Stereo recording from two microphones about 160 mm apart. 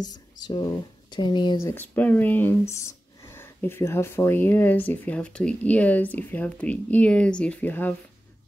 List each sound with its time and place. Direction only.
0.0 s speech: 25° left (ahead or behind)
1.7 s speech: 10° left (ahead or behind)